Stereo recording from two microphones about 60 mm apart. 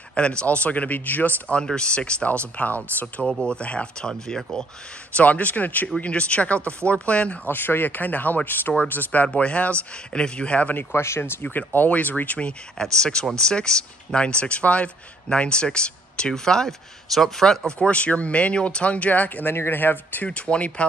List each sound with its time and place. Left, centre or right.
0.1 s speech: centre
1.5 s speech: centre
3.3 s speech: centre
5.1 s speech: left
7.4 s speech: left
10.8 s speech: left
11.5 s speech: left; by 17.6 s centre
17.6 s speech: centre
19.5 s speech: left
20.2 s speech: centre